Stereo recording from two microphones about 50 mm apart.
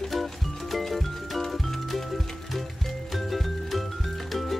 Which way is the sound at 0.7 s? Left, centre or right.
Centre.